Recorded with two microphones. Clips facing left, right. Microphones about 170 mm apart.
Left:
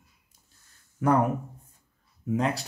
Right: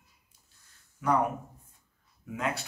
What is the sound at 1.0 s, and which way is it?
Speech, 50° left (ahead or behind).